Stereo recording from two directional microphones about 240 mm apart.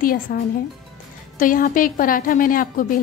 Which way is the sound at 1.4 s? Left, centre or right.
Left.